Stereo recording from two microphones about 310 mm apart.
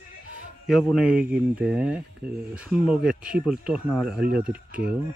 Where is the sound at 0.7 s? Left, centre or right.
Centre.